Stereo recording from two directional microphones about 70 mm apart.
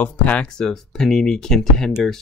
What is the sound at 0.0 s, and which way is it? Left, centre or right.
Speech, centre.